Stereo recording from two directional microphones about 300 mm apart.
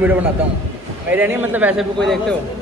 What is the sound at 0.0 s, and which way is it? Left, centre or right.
A man's voice, centre.